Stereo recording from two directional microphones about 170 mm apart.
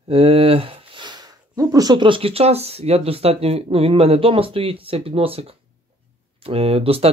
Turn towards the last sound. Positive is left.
turn(degrees=-35)  # may be behind; listen again after turning